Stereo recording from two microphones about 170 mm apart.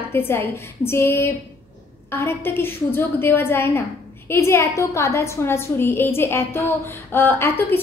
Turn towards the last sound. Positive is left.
turn(degrees=10)  # may be behind; listen again after turning